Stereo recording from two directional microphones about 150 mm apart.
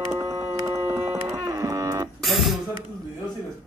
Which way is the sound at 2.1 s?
Centre (ahead or behind).